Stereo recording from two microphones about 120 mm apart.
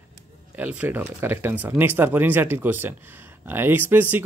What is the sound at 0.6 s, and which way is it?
Speech, 15° right (ahead or behind).